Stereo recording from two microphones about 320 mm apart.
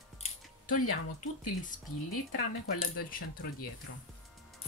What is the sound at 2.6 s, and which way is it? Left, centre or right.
Speech, left.